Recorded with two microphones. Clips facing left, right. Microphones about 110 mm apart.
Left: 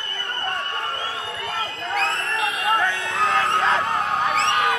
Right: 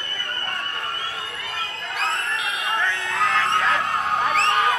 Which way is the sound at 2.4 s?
25° left (ahead or behind).